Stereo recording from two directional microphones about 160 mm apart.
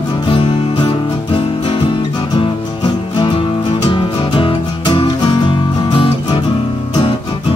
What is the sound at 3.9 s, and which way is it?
Music, 30° left (ahead or behind).